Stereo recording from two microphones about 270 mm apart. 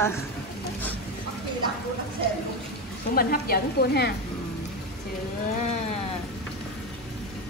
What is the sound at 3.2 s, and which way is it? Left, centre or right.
Speech, left.